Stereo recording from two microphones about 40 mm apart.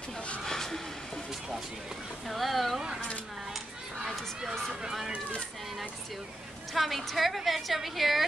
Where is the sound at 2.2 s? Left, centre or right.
Centre.